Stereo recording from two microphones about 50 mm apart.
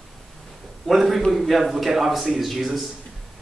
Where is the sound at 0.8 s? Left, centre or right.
Centre.